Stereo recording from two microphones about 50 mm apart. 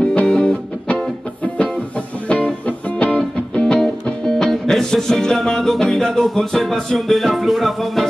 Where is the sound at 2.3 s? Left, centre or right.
Left.